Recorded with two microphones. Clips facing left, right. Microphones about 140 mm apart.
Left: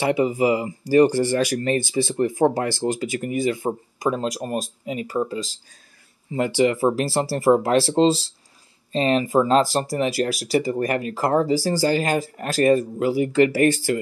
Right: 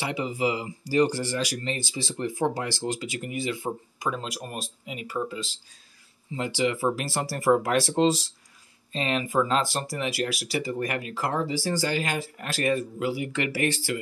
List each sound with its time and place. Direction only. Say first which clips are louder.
0.0 s speech: left 8 dB; 50° left (ahead or behind)
6.3 s speech: left 7 dB; 55° left (ahead or behind)